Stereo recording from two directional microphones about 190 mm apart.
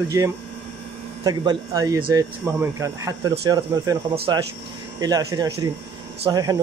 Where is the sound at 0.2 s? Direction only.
15° right (ahead or behind).